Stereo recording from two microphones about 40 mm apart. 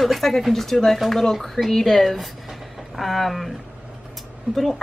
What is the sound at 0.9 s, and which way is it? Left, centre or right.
Speech, centre.